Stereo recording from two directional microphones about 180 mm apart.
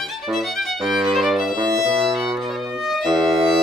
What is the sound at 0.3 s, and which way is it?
Violin, centre (ahead or behind).